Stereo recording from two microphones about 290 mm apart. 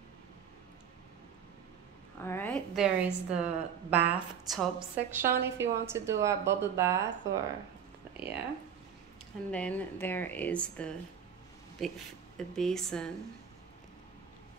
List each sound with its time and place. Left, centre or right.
2.1 s a woman's voice: centre
8.2 s speech: right
9.5 s a woman's voice: centre